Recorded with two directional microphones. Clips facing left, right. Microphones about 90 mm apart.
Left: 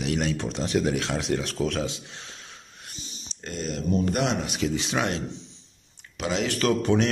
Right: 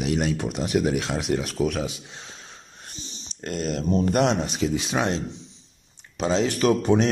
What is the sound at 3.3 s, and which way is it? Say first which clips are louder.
Speech: right 4 dB; 50° right (ahead or behind).